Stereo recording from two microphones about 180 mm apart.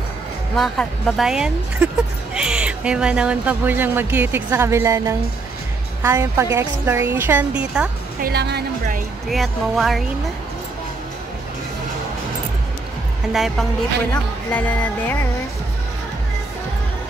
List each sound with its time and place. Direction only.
0.6 s speech: centre (ahead or behind)
8.2 s a woman's voice: 65° right (ahead or behind)
9.3 s speech: centre (ahead or behind)
13.3 s speech: centre (ahead or behind)
14.1 s music: 10° left (ahead or behind)